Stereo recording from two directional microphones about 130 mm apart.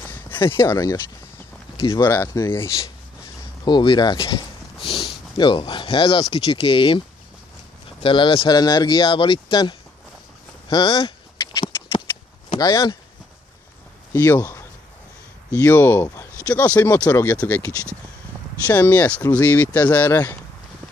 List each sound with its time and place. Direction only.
0.3 s a sound: 40° left (ahead or behind)
0.6 s speech: 25° left (ahead or behind)
3.6 s speech: 35° left (ahead or behind)
4.8 s speech: 45° left (ahead or behind)
8.0 s speech: 40° left (ahead or behind)
12.5 s speech: 30° left (ahead or behind)
14.1 s speech: 15° left (ahead or behind)
18.7 s speech: 15° left (ahead or behind)